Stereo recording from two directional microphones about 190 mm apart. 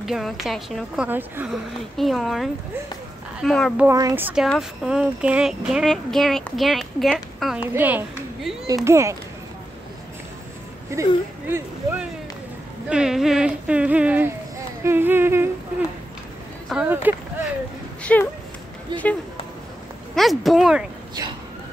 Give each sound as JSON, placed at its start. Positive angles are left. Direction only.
{"t": 0.0, "sound": "speech", "side_deg": 0}
{"t": 3.8, "sound": "speech", "side_deg": -15}
{"t": 10.9, "sound": "speech", "side_deg": -15}
{"t": 16.6, "sound": "speech", "side_deg": -5}
{"t": 18.0, "sound": "speech", "side_deg": 10}
{"t": 20.2, "sound": "speech", "side_deg": 0}